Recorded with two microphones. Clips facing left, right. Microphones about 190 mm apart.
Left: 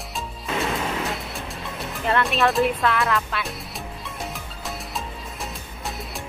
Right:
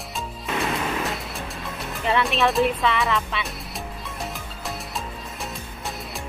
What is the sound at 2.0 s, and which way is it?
Speech, centre (ahead or behind).